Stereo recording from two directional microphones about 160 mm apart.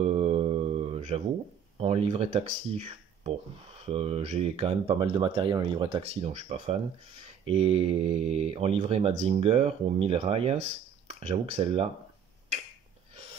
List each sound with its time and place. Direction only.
0.0 s mantra: 40° right (ahead or behind)
1.8 s speech: 40° right (ahead or behind)
13.1 s a sound: 40° right (ahead or behind)